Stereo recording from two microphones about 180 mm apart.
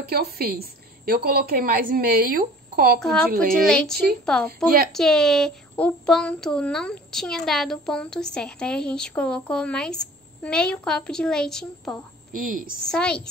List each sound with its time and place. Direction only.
0.0 s a woman's voice: 60° right (ahead or behind)
3.0 s speech: 5° left (ahead or behind)
12.3 s a woman's voice: 50° right (ahead or behind)
12.8 s speech: 5° left (ahead or behind)